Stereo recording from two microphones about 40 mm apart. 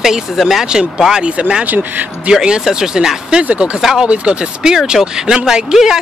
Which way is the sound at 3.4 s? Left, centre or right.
Right.